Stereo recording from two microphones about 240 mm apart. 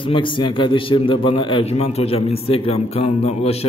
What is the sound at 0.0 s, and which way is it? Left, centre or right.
A man's voice, left.